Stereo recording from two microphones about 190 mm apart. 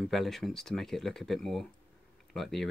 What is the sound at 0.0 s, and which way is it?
Speech, centre (ahead or behind).